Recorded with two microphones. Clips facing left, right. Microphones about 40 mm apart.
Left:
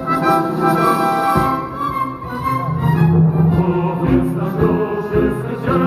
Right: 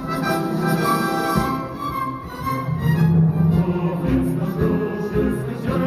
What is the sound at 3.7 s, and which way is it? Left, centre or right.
Music, left.